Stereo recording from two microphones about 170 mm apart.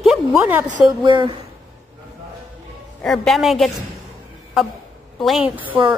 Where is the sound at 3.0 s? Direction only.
Centre (ahead or behind).